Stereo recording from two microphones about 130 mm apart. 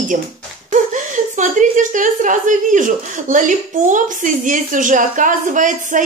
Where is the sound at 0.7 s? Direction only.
70° right (ahead or behind).